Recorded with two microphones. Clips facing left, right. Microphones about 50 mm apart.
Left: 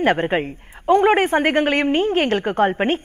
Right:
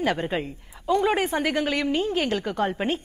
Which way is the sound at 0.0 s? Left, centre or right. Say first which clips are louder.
Left 7 dB; left.